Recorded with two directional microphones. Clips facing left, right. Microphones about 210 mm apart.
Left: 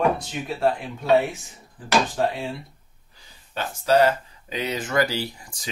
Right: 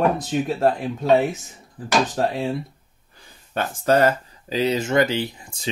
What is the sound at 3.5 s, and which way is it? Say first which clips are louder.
Speech: right 1 dB; 50° right (ahead or behind).